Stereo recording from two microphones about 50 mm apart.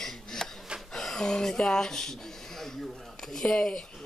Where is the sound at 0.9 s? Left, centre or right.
Centre.